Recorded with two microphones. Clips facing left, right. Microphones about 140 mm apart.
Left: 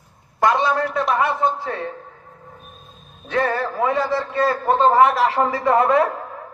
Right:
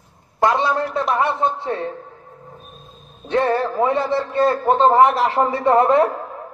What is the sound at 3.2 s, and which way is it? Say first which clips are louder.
A man's voice: right 3 dB; 30° right (ahead or behind).